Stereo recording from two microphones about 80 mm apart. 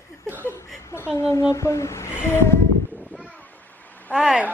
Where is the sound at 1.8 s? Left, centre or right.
Left.